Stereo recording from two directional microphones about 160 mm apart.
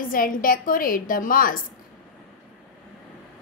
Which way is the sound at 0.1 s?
60° left (ahead or behind).